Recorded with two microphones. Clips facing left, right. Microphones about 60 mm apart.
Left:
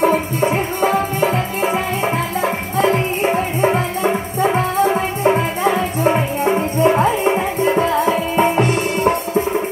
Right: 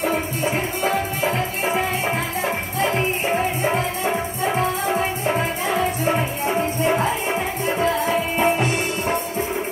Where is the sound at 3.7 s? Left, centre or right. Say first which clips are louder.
Left 4 dB; left.